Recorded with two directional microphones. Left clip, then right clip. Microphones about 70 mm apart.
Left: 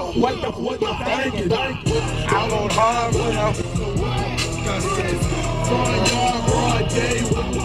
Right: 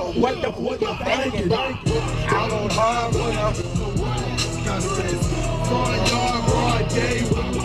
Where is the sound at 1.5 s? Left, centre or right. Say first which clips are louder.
Left 1 dB; left.